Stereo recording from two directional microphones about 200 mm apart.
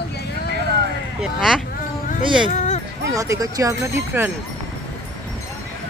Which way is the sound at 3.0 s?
15° right (ahead or behind).